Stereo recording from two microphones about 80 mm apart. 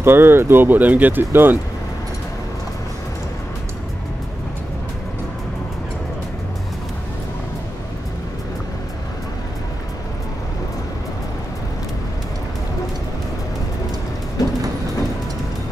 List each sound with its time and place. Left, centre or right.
0.0 s speech: right
14.4 s train: left